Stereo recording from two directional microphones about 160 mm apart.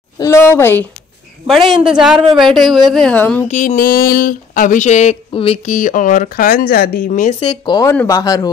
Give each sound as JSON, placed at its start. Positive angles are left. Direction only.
{"t": 0.2, "sound": "a woman's voice", "side_deg": 15}
{"t": 1.7, "sound": "a man's voice", "side_deg": -5}
{"t": 3.4, "sound": "a sound", "side_deg": 50}
{"t": 5.7, "sound": "speech", "side_deg": 55}
{"t": 7.4, "sound": "speech", "side_deg": 25}
{"t": 7.9, "sound": "a woman's voice", "side_deg": 10}
{"t": 8.2, "sound": "speech", "side_deg": 20}